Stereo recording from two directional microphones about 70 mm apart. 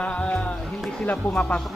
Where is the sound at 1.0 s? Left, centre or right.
Centre.